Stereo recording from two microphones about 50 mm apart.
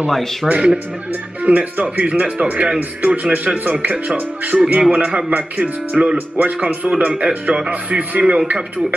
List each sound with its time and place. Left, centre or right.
0.1 s speech: centre
0.5 s a man's voice: right